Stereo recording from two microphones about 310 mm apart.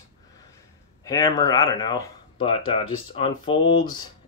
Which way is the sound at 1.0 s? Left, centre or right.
Centre.